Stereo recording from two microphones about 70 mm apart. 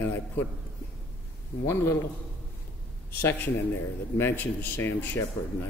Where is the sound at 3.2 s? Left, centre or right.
Left.